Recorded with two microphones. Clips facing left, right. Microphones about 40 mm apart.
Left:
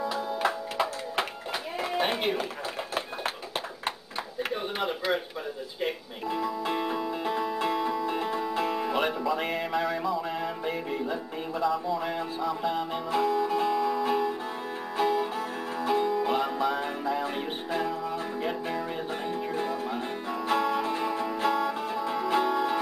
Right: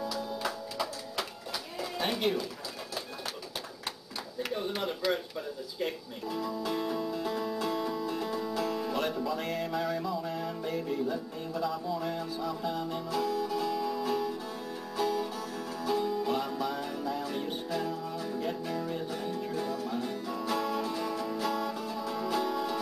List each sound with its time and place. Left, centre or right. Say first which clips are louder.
0.1 s music: left 6 dB; left
1.8 s a sound: left 4 dB; left
4.4 s a sound: left 2 dB; left
5.8 s music: left 3 dB; left
11.6 s music: left 6 dB; centre
12.0 s music: left 3 dB; left